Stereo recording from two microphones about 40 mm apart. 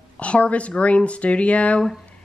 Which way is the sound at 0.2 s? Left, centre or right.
Left.